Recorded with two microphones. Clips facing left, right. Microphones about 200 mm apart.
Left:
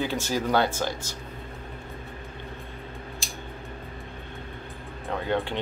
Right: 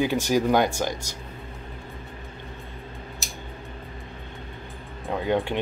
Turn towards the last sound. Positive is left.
turn(degrees=-15)  # may be behind; listen again after turning